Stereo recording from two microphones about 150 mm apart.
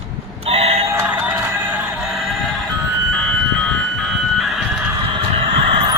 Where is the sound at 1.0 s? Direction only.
10° right (ahead or behind).